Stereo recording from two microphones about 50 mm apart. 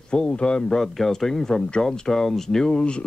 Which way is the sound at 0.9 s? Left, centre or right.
Centre.